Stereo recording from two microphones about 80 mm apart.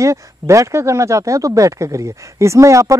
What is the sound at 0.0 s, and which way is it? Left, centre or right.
Speech, right.